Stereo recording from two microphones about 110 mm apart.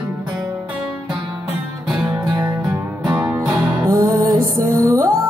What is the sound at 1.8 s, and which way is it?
Music, 10° right (ahead or behind).